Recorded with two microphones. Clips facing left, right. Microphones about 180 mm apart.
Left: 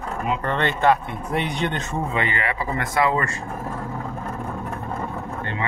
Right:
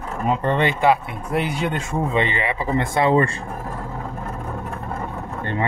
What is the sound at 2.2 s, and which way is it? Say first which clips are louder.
Speech: right 3 dB; 20° right (ahead or behind).